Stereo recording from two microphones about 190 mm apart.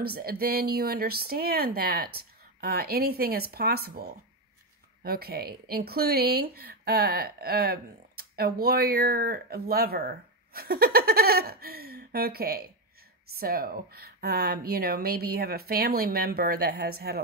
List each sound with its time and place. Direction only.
0.0 s speech: 55° right (ahead or behind)